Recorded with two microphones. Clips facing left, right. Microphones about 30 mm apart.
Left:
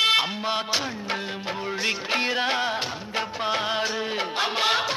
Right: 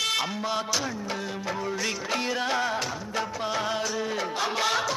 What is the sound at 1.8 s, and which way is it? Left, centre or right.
Music, left.